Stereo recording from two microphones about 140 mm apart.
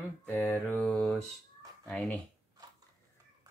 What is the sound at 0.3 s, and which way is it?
Mantra, 15° left (ahead or behind).